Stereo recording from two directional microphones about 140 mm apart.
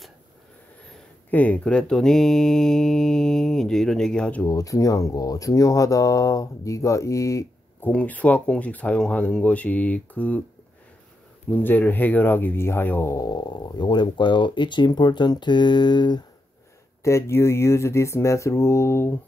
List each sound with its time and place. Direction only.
1.3 s speech: 10° left (ahead or behind)
4.5 s speech: 25° left (ahead or behind)
7.9 s speech: 10° left (ahead or behind)
11.5 s speech: 15° left (ahead or behind); by 16.3 s 30° left (ahead or behind)
17.0 s speech: 20° left (ahead or behind)